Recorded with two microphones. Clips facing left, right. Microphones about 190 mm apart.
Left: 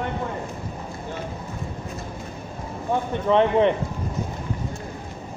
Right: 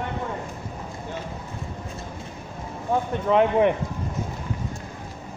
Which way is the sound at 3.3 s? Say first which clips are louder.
Left 1 dB; 10° right (ahead or behind).